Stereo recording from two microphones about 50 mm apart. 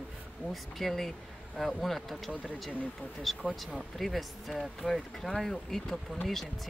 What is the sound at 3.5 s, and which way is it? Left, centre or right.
Speech, centre.